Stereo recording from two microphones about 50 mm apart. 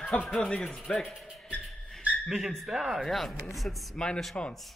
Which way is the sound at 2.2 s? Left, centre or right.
Centre.